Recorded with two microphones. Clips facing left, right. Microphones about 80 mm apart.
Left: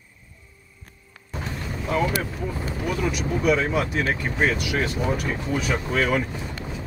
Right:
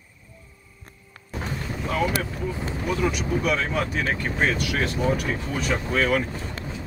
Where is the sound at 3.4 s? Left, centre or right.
Centre.